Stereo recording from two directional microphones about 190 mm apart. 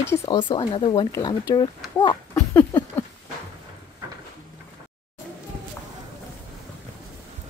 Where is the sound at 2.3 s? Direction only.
10° left (ahead or behind).